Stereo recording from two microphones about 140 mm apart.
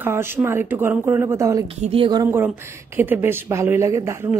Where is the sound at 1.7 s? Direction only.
40° right (ahead or behind).